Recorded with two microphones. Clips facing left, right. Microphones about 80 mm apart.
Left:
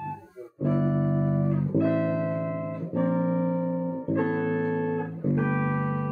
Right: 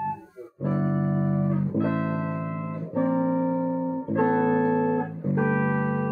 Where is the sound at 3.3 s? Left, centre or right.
Right.